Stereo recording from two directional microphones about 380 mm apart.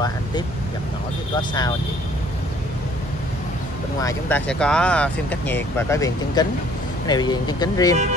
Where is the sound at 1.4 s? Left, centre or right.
Centre.